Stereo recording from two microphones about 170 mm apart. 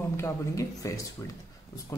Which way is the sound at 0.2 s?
20° left (ahead or behind).